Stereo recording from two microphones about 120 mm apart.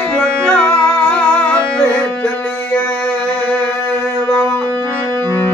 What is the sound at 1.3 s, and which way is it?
Carnatic music, 10° left (ahead or behind).